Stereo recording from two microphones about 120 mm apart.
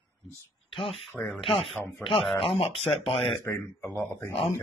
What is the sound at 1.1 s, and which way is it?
Speech, 15° left (ahead or behind).